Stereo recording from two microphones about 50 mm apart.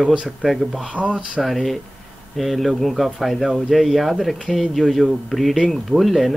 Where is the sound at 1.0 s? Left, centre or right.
Centre.